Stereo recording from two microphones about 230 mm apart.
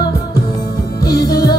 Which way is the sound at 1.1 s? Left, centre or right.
Centre.